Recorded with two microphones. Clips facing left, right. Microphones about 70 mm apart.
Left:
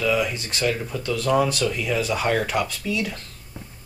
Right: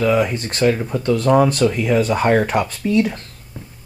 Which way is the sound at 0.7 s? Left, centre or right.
Right.